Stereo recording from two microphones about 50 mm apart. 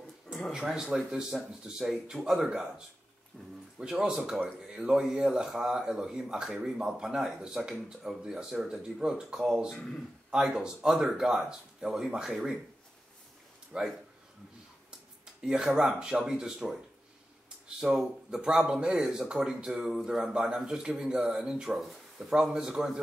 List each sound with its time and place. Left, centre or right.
0.5 s speech: centre
3.4 s speech: centre
3.8 s speech: centre
13.7 s a man's voice: centre
15.2 s speech: centre